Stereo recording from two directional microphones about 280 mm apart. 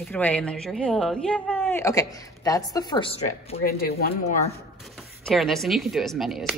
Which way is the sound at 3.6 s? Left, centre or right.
Left.